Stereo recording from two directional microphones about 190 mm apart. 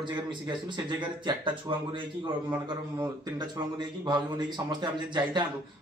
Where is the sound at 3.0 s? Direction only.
20° right (ahead or behind).